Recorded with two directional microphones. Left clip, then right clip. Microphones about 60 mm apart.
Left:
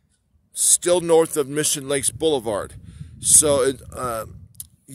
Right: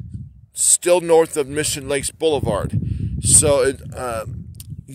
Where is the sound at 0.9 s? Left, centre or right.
Left.